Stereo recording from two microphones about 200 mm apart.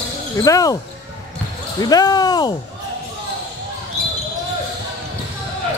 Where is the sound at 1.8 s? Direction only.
20° left (ahead or behind).